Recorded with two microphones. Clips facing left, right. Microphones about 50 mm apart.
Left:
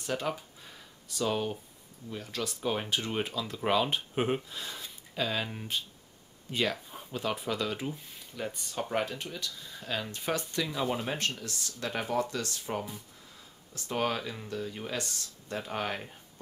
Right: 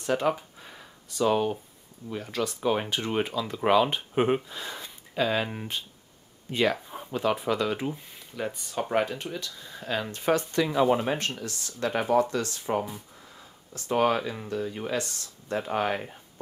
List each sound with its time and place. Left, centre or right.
0.0 s a sound: centre
1.1 s speech: centre
13.8 s speech: right